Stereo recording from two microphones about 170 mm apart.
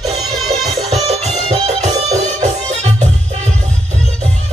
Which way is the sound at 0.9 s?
40° right (ahead or behind).